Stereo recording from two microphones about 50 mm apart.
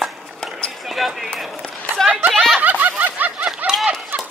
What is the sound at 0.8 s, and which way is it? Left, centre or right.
Speech, centre.